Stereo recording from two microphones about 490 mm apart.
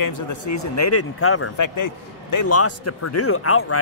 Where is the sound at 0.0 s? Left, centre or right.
Left.